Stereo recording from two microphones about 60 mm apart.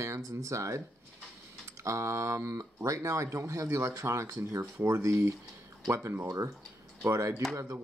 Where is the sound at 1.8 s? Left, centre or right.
Right.